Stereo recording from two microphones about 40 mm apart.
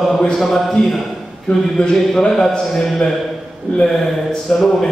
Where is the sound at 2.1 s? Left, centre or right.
Centre.